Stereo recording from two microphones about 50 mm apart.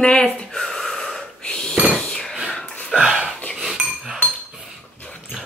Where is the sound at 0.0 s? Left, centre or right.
Left.